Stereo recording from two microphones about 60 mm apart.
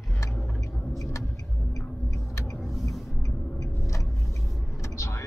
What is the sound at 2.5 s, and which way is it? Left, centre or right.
Vehicle, centre.